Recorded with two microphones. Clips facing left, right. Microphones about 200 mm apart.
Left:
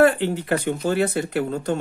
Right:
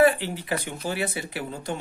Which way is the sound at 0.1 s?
55° left (ahead or behind).